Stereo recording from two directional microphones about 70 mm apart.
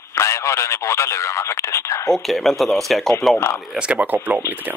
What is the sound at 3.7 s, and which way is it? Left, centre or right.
Speech, centre.